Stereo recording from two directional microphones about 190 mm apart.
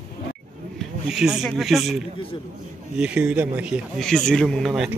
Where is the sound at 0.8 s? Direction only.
5° right (ahead or behind).